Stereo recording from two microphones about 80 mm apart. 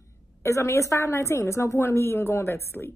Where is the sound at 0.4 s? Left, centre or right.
Left.